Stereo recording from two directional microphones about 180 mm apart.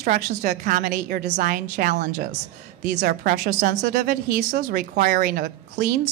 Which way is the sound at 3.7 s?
60° right (ahead or behind).